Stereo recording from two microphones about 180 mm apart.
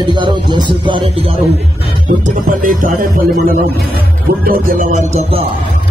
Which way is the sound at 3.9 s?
55° right (ahead or behind).